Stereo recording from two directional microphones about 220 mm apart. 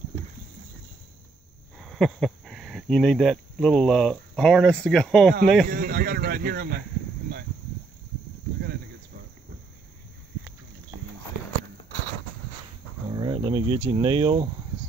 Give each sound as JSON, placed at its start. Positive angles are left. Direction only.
{"t": 1.8, "sound": "speech", "side_deg": 0}
{"t": 5.7, "sound": "speech", "side_deg": -40}
{"t": 13.1, "sound": "speech", "side_deg": -20}